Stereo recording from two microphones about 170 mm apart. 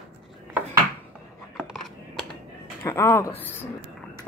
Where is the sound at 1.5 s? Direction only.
Centre (ahead or behind).